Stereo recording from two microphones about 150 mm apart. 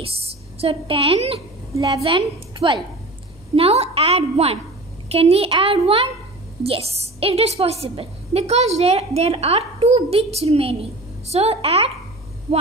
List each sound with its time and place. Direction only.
0.6 s a woman's voice: 40° right (ahead or behind)
1.8 s a woman's voice: 25° right (ahead or behind)
2.0 s a woman's voice: 35° right (ahead or behind)